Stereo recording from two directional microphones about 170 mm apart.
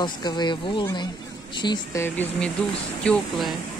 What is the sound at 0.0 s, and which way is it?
Speech, 25° left (ahead or behind).